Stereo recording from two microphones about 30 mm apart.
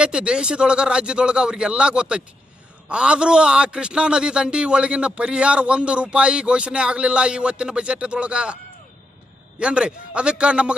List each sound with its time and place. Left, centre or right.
0.0 s a man's voice: right
9.6 s a man's voice: right